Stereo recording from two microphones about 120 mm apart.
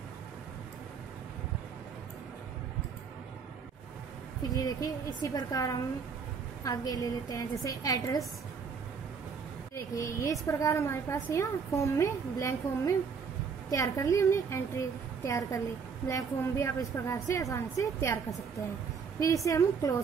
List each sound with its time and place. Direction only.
4.6 s a woman's voice: 30° left (ahead or behind)
9.9 s a woman's voice: 25° left (ahead or behind)